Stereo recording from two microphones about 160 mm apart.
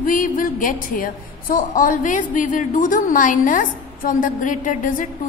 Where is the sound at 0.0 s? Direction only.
60° left (ahead or behind).